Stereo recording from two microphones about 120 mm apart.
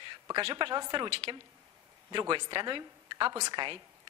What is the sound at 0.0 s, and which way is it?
A woman's voice, 40° right (ahead or behind).